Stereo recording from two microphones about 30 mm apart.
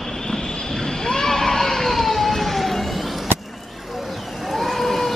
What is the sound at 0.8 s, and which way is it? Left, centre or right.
Vehicle, left.